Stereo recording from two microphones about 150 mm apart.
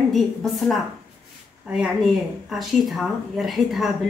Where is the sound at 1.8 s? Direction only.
Centre (ahead or behind).